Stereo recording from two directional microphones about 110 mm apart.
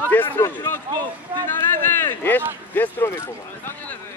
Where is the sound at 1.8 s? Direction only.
20° left (ahead or behind).